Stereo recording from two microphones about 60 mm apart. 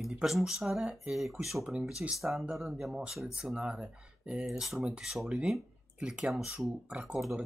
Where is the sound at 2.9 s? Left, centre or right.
Centre.